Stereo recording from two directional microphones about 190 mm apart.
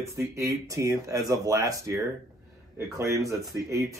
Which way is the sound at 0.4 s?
15° right (ahead or behind).